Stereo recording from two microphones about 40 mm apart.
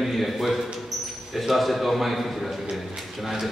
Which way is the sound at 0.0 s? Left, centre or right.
Centre.